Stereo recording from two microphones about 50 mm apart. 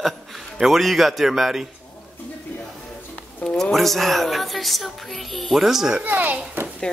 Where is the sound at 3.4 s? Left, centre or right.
Centre.